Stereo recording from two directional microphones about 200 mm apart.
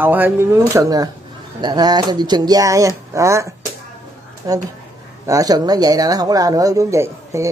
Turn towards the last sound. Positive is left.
turn(degrees=-15)  # may be behind; listen again after turning